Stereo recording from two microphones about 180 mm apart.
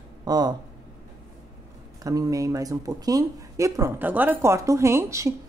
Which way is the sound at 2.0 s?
20° right (ahead or behind).